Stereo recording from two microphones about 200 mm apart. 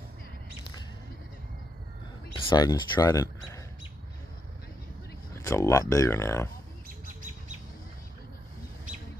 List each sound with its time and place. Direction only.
2.3 s speech: 20° left (ahead or behind)
5.3 s speech: 15° left (ahead or behind)